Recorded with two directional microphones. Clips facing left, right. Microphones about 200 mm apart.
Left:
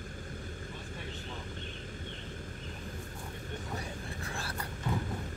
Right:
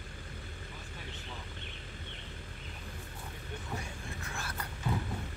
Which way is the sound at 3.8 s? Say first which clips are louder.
Left 3 dB; 35° left (ahead or behind).